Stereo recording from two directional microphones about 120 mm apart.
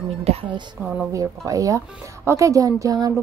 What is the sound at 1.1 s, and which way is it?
Speech, 30° right (ahead or behind).